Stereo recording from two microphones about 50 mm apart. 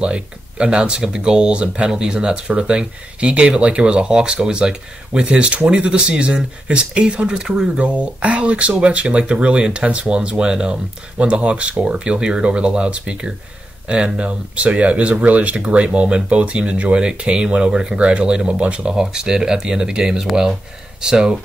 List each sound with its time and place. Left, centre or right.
0.0 s speech: right